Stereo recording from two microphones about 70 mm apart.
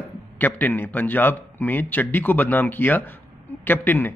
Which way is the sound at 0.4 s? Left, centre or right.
Left.